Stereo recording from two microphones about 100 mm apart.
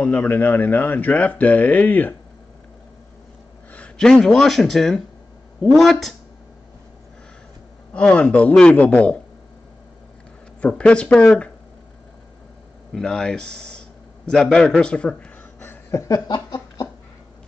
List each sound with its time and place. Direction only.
0.0 s speech: 15° left (ahead or behind)
3.7 s speech: 10° left (ahead or behind)
7.9 s speech: 10° left (ahead or behind)
10.6 s speech: 10° left (ahead or behind)
12.9 s a man's voice: 10° left (ahead or behind)
15.9 s a sound: 30° left (ahead or behind)
16.3 s a sound: 45° left (ahead or behind)